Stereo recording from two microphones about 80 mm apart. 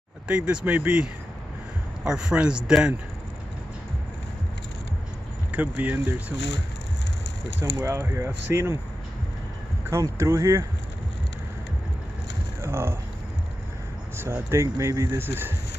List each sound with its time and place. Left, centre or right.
0.3 s speech: centre
5.5 s speech: centre
7.8 s speech: right
9.8 s speech: right
12.6 s a sound: right
14.1 s speech: right